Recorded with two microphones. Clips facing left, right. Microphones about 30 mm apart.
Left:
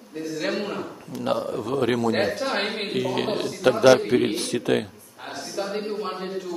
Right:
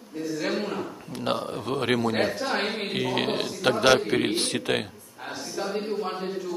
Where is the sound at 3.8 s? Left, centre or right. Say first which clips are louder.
Left 4 dB; right.